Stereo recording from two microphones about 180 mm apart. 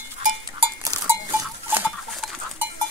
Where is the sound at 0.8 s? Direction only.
20° right (ahead or behind).